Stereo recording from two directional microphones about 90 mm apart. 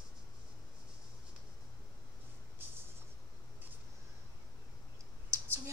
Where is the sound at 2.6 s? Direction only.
20° right (ahead or behind).